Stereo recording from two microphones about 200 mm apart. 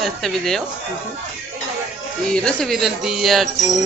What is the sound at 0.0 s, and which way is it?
Speech, centre (ahead or behind).